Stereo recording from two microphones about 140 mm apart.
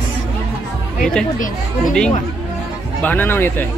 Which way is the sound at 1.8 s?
5° left (ahead or behind).